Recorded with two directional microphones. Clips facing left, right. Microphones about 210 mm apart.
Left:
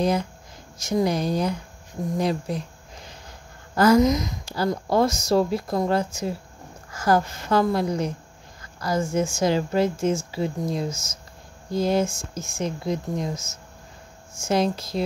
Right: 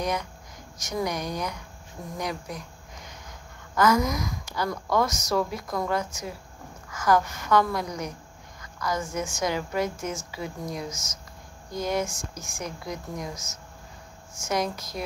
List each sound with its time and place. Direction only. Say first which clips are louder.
0.0 s a woman's voice: left 6 dB; 30° left (ahead or behind)